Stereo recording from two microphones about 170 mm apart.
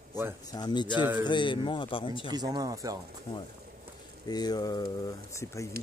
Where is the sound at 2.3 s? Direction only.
20° right (ahead or behind).